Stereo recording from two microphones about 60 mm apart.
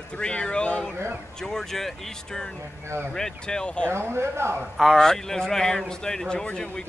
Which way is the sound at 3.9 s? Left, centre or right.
Right.